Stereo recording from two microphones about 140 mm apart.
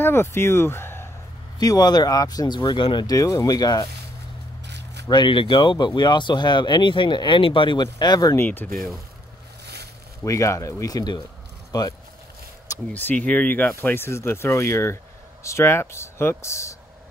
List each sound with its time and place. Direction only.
0.0 s speech: 15° left (ahead or behind)
1.6 s speech: 30° left (ahead or behind)
5.0 s speech: 35° left (ahead or behind)
8.7 s speech: centre (ahead or behind)
10.2 s speech: 20° left (ahead or behind)
12.9 s speech: 10° left (ahead or behind)